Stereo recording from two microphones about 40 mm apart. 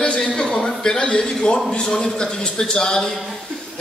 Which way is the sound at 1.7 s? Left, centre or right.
Left.